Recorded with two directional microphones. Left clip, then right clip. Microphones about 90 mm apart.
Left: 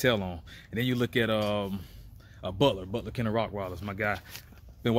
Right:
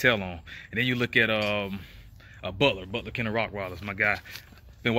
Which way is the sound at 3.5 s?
30° left (ahead or behind).